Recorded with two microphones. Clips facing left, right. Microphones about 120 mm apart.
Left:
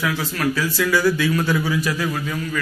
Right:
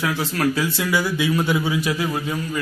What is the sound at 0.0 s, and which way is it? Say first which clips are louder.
A man's voice: right 1 dB; 25° right (ahead or behind).